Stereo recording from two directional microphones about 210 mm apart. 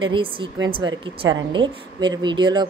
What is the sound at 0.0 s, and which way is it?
A woman's voice, 25° right (ahead or behind).